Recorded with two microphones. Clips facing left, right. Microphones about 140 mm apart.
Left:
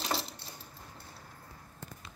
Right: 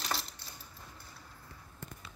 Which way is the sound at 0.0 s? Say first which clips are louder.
Left 3 dB; 30° left (ahead or behind).